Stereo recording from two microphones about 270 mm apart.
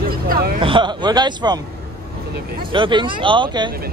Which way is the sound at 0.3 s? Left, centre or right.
Right.